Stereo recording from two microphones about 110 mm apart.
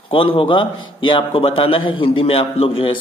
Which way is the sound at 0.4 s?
50° left (ahead or behind).